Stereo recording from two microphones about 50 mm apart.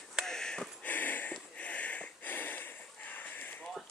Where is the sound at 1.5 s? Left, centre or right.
Left.